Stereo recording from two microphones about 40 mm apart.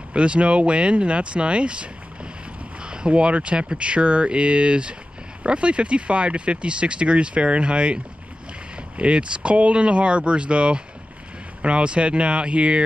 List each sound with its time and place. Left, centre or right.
0.1 s speech: right